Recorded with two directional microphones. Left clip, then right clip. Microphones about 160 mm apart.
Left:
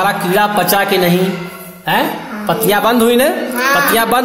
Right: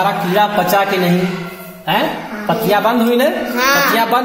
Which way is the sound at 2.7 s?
50° left (ahead or behind).